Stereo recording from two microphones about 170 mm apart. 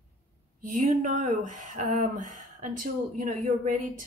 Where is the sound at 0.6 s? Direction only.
50° right (ahead or behind).